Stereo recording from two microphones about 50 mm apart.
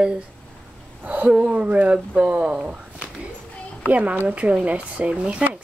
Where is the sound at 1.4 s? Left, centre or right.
Right.